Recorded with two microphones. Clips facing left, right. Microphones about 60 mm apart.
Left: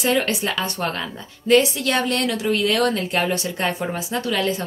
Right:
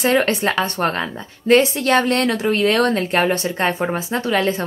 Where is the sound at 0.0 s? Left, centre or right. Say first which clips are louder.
Right 4 dB; right.